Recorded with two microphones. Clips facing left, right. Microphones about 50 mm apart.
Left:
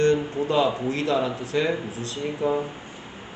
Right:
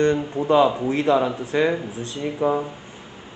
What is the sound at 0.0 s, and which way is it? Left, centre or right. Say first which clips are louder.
A man's voice: right 1 dB; right.